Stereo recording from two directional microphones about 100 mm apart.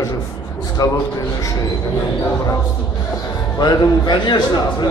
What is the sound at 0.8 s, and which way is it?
Speech, 40° left (ahead or behind).